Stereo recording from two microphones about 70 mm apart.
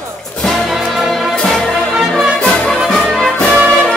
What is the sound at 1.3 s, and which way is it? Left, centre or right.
Music, centre.